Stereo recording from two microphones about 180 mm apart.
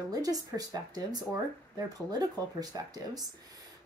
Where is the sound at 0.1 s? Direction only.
20° right (ahead or behind).